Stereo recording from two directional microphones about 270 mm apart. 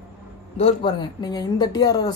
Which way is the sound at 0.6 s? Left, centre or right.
Centre.